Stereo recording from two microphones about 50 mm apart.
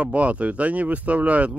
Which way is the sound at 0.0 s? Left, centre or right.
Right.